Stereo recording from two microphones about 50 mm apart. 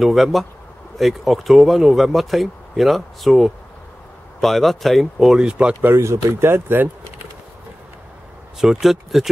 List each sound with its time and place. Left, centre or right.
0.0 s speech: centre
5.4 s speech: centre
5.9 s speech: right
6.5 s speech: right
8.5 s speech: centre